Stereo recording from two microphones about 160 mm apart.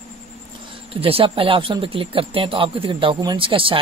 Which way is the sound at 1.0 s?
35° right (ahead or behind).